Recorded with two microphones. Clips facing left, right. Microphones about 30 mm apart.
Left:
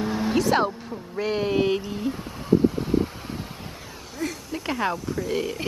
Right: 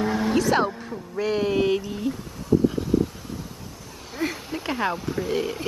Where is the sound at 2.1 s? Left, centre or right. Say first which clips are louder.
Left 2 dB; left.